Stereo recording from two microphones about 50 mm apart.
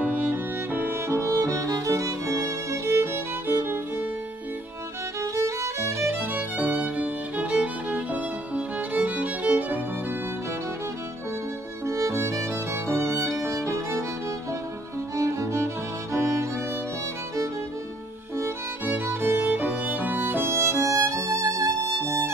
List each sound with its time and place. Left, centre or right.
0.0 s music: right
1.0 s music: right
5.2 s music: right
6.1 s music: right
11.8 s music: right
13.5 s violin: right
15.1 s music: right
18.9 s music: right
20.4 s music: right